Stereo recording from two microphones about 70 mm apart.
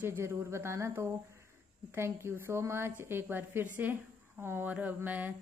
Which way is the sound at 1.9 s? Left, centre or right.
Right.